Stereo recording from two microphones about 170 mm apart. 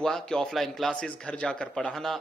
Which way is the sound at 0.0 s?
5° left (ahead or behind).